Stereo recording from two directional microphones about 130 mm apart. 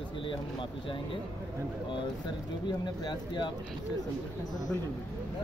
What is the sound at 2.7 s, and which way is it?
Speech, 35° left (ahead or behind).